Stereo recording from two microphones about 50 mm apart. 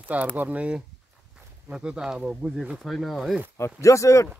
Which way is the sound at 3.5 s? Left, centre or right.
Left.